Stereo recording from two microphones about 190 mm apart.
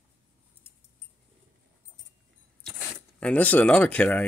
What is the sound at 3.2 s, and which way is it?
Speech, 10° left (ahead or behind).